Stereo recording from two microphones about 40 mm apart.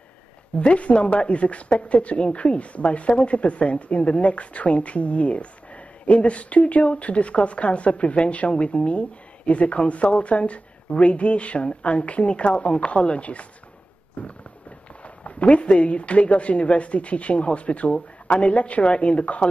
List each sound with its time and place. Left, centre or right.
0.6 s a woman's voice: left